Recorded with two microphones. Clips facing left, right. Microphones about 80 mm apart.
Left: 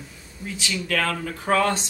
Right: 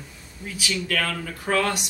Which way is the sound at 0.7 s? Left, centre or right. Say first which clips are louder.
Left 2 dB; centre.